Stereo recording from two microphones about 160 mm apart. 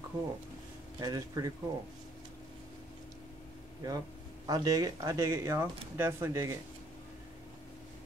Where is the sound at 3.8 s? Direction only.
25° right (ahead or behind).